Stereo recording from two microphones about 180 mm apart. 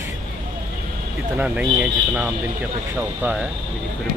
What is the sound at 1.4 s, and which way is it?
Speech, 10° right (ahead or behind).